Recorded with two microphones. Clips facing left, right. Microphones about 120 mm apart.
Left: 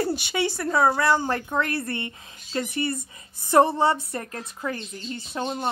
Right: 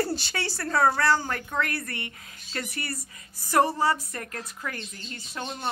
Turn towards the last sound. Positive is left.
turn(degrees=25)  # may be behind; listen again after turning